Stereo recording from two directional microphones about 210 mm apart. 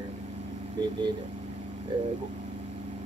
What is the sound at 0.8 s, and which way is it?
Speech, 20° right (ahead or behind).